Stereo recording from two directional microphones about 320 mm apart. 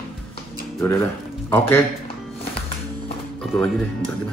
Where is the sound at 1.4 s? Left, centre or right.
Centre.